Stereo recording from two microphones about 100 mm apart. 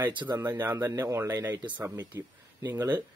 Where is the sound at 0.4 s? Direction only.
20° right (ahead or behind).